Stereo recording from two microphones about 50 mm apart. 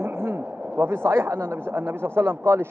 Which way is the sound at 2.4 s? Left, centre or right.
Right.